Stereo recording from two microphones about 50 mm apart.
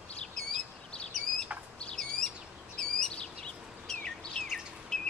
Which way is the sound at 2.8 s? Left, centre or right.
Centre.